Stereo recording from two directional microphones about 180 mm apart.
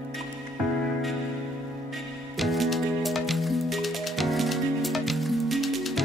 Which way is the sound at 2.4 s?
Centre (ahead or behind).